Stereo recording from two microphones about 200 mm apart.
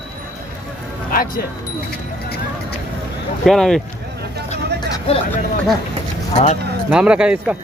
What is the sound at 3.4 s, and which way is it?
Speech, centre (ahead or behind).